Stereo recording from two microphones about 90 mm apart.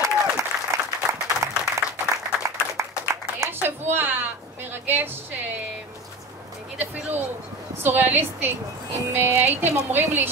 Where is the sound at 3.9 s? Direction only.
25° right (ahead or behind).